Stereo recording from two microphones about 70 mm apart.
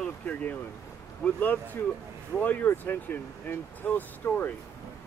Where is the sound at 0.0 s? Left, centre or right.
Left.